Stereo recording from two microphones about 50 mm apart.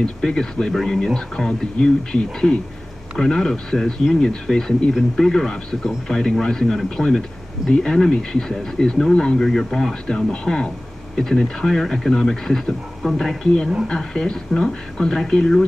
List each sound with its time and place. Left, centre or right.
0.0 s speech: centre